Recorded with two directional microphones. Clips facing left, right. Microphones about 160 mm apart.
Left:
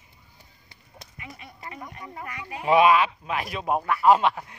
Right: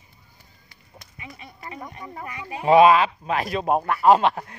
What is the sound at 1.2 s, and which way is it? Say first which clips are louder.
Speech: right 1 dB; 25° right (ahead or behind).